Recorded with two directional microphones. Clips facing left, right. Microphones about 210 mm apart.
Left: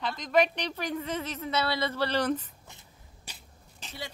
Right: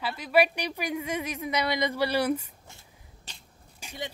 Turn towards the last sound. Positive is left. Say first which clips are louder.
# right 3 dB
turn(degrees=-15)  # may be behind; listen again after turning